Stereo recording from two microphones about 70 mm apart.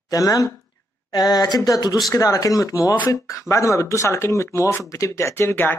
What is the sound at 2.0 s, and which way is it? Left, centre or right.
Speech, left.